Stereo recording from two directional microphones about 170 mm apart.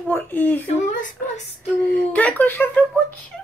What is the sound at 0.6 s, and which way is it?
Speech, 50° left (ahead or behind).